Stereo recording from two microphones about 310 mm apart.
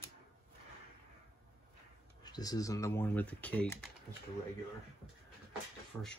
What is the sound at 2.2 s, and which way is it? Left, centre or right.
Speech, centre.